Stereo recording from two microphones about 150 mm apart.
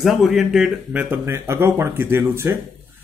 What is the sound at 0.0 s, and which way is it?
Speech, centre (ahead or behind).